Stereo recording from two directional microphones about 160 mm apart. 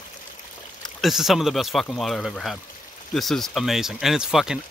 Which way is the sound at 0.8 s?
Centre (ahead or behind).